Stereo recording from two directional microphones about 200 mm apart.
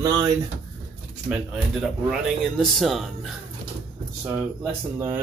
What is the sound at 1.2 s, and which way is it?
Speech, 5° right (ahead or behind).